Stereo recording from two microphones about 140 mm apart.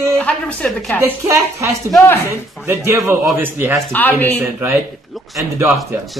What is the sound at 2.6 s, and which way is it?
A man's voice, 20° right (ahead or behind).